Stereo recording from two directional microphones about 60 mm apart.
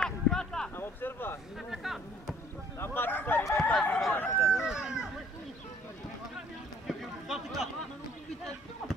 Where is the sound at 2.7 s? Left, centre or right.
Left.